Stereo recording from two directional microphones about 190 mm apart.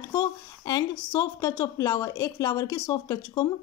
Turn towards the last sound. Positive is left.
turn(degrees=20)  # may be behind; listen again after turning